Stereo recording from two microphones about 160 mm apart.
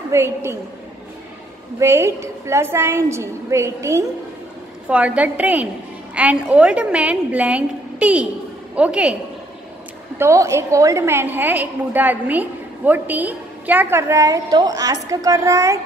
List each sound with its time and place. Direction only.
0.1 s a woman's voice: 15° right (ahead or behind)
1.8 s a woman's voice: 15° right (ahead or behind)
10.1 s a woman's voice: 20° right (ahead or behind)